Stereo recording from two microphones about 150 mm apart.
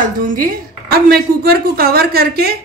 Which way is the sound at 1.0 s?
90° right.